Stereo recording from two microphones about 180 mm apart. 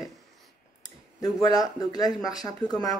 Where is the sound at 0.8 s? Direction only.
20° left (ahead or behind).